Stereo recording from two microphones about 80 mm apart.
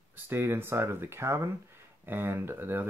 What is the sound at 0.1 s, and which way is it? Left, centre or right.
Speech, right.